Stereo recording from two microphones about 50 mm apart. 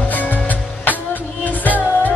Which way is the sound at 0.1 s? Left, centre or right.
Left.